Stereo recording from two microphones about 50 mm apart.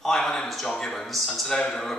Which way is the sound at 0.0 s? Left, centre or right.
Centre.